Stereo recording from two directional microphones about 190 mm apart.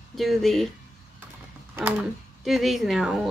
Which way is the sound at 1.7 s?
5° right (ahead or behind).